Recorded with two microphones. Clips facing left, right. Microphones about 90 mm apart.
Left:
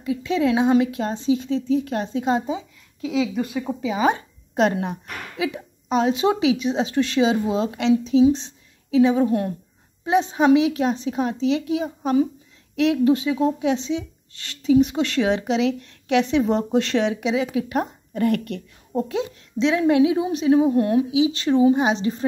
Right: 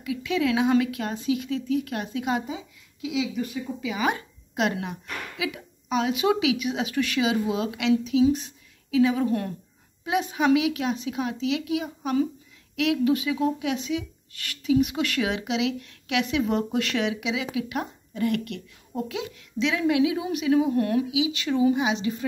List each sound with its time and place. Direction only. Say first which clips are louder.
0.0 s a woman's voice: left 4 dB; 30° left (ahead or behind)
3.4 s speech: left 5 dB; 70° left (ahead or behind)
3.8 s a woman's voice: left 6 dB; 30° left (ahead or behind)